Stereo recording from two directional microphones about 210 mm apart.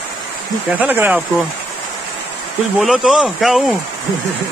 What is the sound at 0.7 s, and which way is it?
Speech, 10° right (ahead or behind).